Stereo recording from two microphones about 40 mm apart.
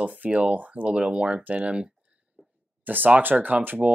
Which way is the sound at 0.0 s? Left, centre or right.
Right.